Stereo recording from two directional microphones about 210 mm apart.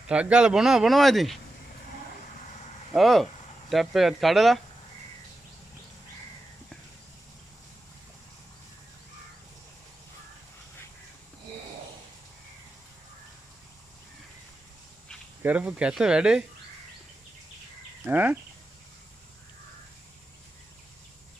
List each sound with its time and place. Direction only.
0.0 s speech: 5° right (ahead or behind)
2.4 s vehicle: 35° left (ahead or behind)
2.9 s speech: centre (ahead or behind)
15.4 s speech: 5° right (ahead or behind)
18.0 s speech: 10° right (ahead or behind)